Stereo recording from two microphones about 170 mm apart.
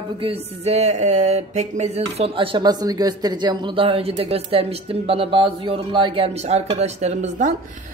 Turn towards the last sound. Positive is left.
turn(degrees=-40)  # may be behind; listen again after turning